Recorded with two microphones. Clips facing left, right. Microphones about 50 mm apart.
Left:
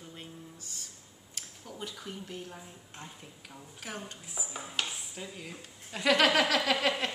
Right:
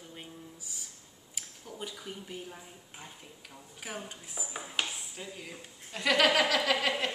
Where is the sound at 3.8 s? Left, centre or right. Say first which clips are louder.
Right 1 dB; centre.